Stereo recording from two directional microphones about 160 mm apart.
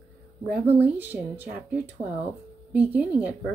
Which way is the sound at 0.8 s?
10° right (ahead or behind).